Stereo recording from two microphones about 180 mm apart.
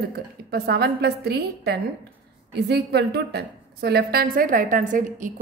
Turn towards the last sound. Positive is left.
turn(degrees=-45)  # may be behind; listen again after turning